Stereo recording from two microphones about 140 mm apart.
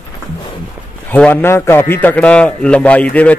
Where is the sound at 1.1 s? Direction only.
10° left (ahead or behind).